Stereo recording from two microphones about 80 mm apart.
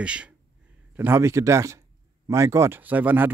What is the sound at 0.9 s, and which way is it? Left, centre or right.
Speech, right.